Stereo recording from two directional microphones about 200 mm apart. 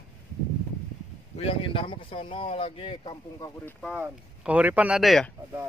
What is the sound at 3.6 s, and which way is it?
A man's voice, centre (ahead or behind).